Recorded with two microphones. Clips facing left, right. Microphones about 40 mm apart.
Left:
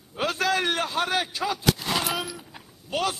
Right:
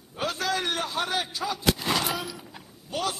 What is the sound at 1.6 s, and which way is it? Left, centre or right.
Gunshot, centre.